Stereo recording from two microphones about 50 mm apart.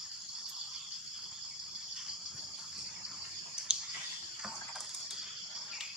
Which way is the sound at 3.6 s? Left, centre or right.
Centre.